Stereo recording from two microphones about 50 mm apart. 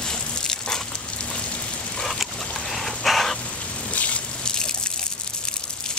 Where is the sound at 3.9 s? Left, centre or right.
Left.